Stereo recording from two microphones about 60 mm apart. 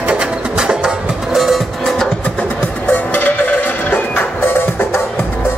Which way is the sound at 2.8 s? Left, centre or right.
Left.